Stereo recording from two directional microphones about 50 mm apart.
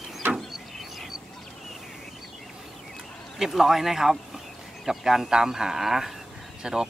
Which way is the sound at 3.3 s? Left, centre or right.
Centre.